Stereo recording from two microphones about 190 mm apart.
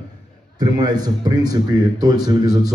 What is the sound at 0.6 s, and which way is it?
Speech, 20° right (ahead or behind).